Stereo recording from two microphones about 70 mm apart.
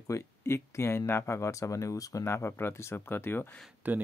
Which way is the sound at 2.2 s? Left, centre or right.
Left.